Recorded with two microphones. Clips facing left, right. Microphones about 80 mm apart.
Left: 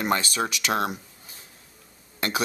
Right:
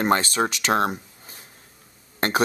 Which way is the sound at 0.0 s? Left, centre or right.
Right.